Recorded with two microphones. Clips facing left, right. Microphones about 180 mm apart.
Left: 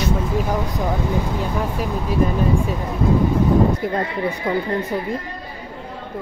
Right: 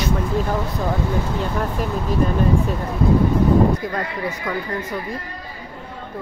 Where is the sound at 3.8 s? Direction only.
30° left (ahead or behind).